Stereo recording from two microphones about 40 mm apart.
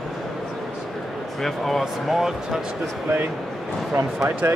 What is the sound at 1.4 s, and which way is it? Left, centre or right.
Speech, centre.